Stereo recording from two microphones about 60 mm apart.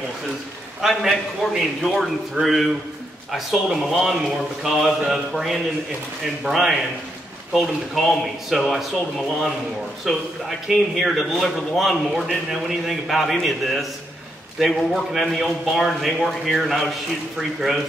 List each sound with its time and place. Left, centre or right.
0.7 s a man's voice: centre
2.4 s speech: right
3.3 s a man's voice: centre
10.1 s a man's voice: centre